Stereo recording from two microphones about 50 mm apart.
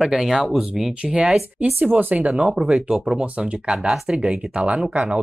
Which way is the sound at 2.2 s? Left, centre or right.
Centre.